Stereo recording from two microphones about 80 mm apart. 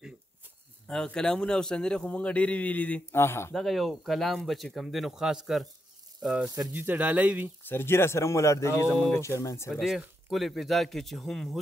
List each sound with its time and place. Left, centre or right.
0.8 s a man's voice: centre
3.1 s speech: left
3.5 s speech: centre
6.7 s speech: right
7.6 s speech: left
9.7 s speech: centre